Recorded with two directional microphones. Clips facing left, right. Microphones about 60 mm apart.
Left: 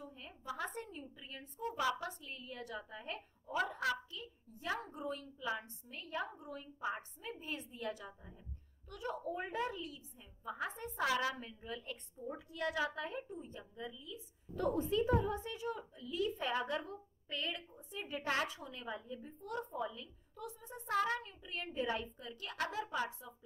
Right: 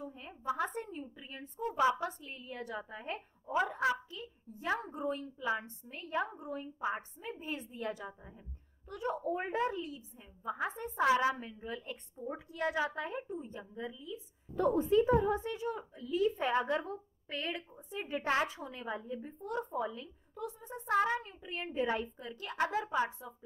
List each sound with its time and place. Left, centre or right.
0.1 s a sound: right
1.8 s a woman's voice: right
21.0 s a woman's voice: right